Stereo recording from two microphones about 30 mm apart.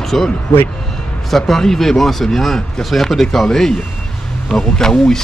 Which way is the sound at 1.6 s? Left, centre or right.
Centre.